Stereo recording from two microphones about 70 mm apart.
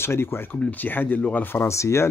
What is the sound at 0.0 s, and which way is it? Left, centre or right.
Speech, left.